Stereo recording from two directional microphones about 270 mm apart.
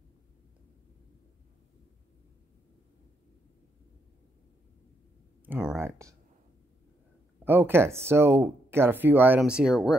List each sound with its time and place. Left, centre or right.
5.4 s speech: centre
7.4 s speech: centre